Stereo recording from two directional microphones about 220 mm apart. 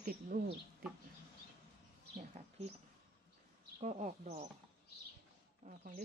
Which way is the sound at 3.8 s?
30° right (ahead or behind).